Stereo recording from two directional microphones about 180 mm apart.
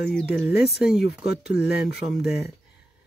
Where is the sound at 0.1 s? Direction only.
Centre (ahead or behind).